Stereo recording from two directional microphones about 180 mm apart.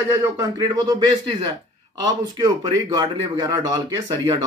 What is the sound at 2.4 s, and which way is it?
Speech, 20° right (ahead or behind).